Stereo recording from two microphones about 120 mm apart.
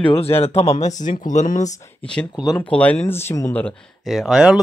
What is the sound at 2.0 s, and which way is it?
Speech, 10° left (ahead or behind).